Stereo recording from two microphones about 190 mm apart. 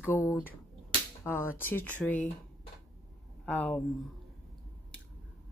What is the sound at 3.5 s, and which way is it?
Speech, 10° left (ahead or behind).